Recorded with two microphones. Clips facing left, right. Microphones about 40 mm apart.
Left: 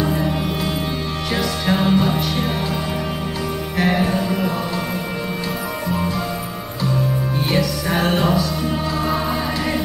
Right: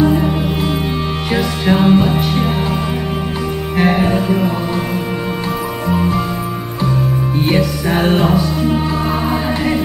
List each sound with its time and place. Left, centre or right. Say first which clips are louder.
0.1 s music: right 5 dB; centre
3.7 s music: right 5 dB; right
7.3 s music: right 5 dB; right